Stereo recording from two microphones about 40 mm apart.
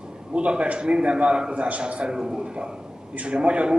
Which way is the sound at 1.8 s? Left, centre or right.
Right.